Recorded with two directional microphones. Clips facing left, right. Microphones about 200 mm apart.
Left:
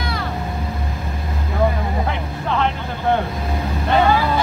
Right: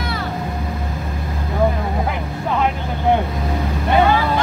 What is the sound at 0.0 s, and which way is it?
Vehicle, centre (ahead or behind).